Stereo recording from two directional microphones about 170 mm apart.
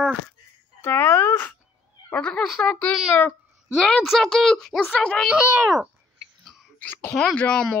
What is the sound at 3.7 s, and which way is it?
A woman's voice, centre (ahead or behind).